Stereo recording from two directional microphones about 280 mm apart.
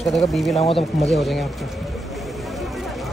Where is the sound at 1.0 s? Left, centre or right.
Centre.